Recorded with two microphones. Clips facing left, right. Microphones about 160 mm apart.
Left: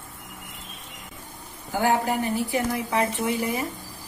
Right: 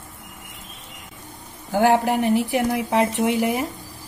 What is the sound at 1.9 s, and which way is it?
Speech, 75° right (ahead or behind).